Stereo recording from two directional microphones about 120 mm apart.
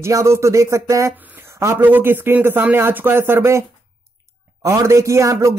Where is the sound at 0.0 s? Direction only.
25° right (ahead or behind).